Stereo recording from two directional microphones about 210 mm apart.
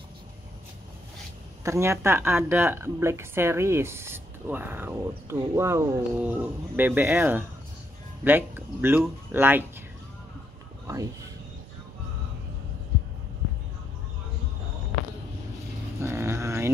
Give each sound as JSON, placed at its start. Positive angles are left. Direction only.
{"t": 1.6, "sound": "speech", "side_deg": -15}
{"t": 10.9, "sound": "speech", "side_deg": -15}
{"t": 16.0, "sound": "a sound", "side_deg": -10}